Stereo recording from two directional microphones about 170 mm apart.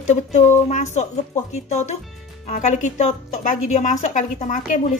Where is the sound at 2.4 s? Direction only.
45° left (ahead or behind).